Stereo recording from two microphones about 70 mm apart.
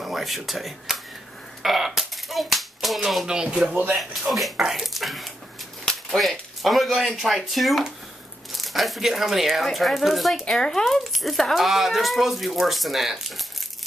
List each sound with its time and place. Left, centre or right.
0.0 s a child's voice: centre
3.9 s speech: centre